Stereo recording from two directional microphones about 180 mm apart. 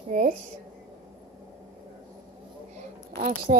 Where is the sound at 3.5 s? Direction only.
40° right (ahead or behind).